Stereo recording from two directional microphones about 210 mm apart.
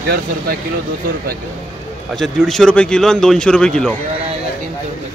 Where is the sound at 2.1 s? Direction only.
Centre (ahead or behind).